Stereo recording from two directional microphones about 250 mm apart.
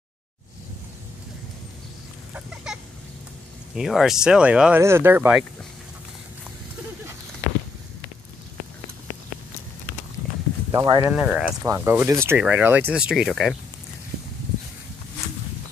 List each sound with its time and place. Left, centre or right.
2.3 s chicken: centre
3.7 s speech: centre
10.7 s speech: centre